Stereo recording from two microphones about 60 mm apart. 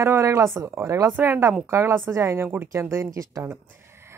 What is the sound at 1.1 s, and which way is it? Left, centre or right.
Speech, right.